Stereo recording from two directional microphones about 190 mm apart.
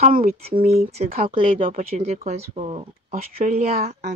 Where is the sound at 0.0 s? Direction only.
50° right (ahead or behind).